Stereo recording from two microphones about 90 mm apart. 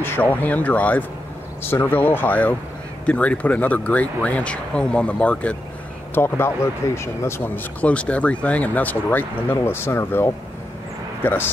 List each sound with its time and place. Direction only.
0.0 s speech: 20° left (ahead or behind)
6.1 s speech: 25° left (ahead or behind)